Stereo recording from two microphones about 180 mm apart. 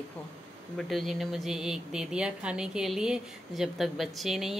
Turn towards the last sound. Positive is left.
turn(degrees=0)  # may be behind; listen again after turning